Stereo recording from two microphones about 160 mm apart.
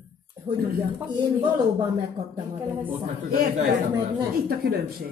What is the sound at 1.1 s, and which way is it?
Speech, 25° right (ahead or behind).